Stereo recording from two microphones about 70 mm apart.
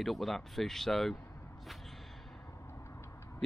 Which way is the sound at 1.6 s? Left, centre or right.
Centre.